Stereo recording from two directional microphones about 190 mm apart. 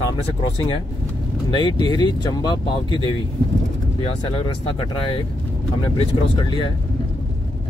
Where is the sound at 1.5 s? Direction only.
20° left (ahead or behind).